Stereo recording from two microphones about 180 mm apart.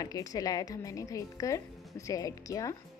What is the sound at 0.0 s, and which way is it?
Speech, 20° left (ahead or behind).